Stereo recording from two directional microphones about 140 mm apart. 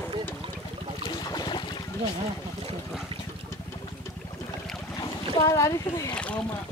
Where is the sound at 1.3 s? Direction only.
30° left (ahead or behind).